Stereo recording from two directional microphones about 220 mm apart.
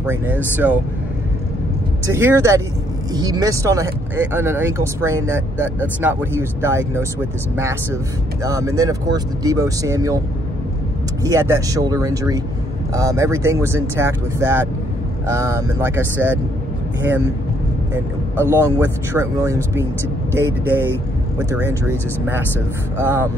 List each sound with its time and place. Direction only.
0.0 s speech: 10° right (ahead or behind)
2.0 s speech: 15° right (ahead or behind)
11.2 s speech: 15° right (ahead or behind)
17.9 s speech: 10° right (ahead or behind)